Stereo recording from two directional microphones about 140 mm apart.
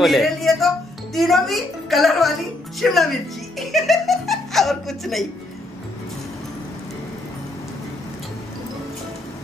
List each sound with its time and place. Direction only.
0.0 s a woman's voice: centre (ahead or behind)
3.5 s giggle: centre (ahead or behind)